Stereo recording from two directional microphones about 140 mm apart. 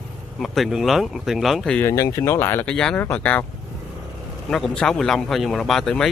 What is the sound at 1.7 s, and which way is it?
Speech, 20° left (ahead or behind).